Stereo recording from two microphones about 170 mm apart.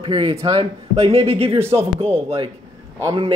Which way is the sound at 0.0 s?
30° right (ahead or behind).